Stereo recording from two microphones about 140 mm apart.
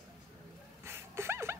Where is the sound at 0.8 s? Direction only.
20° right (ahead or behind).